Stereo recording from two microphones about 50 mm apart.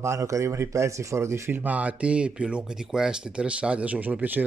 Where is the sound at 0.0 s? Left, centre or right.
Right.